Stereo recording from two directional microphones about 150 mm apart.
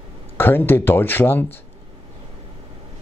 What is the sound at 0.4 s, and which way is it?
A man's voice, 15° left (ahead or behind).